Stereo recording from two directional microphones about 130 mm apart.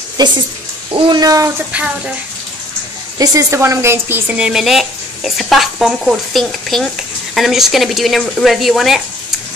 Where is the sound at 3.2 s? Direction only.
25° right (ahead or behind).